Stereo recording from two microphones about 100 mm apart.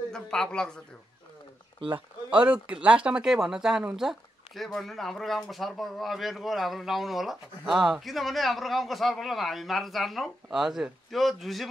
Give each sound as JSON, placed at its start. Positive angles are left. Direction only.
{"t": 0.1, "sound": "speech", "side_deg": 5}
{"t": 1.8, "sound": "speech", "side_deg": -60}
{"t": 2.3, "sound": "speech", "side_deg": -10}